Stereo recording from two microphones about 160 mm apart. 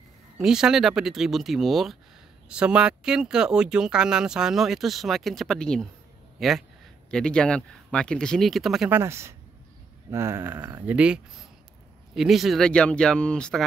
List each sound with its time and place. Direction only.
0.4 s speech: 5° right (ahead or behind)
8.9 s speech: 15° right (ahead or behind); by 13.7 s 5° left (ahead or behind)